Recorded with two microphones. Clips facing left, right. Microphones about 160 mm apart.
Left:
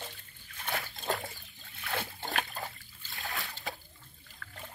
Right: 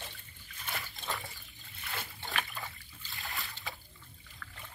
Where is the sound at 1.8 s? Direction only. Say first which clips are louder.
Left 6 dB; 65° left (ahead or behind).